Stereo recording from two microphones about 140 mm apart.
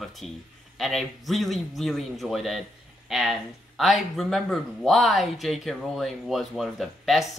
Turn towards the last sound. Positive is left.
turn(degrees=0)  # may be behind; listen again after turning